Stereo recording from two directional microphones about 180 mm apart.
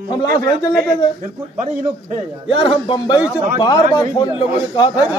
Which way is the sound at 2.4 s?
30° left (ahead or behind).